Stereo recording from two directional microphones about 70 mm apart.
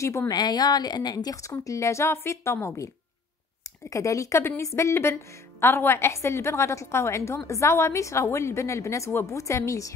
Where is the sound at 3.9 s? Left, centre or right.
Left.